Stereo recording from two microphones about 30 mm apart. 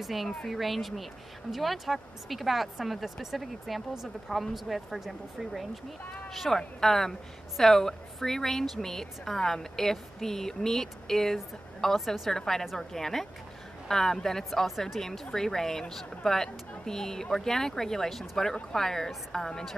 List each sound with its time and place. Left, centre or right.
0.0 s speech: centre
6.5 s a woman's voice: centre